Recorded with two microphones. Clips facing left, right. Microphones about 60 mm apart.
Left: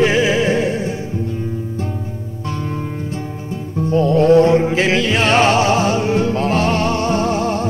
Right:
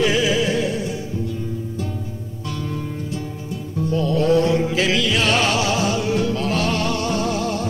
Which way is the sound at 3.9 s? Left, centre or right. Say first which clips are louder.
Left 6 dB; left.